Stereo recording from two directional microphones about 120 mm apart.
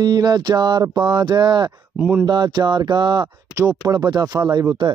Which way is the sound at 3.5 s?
25° right (ahead or behind).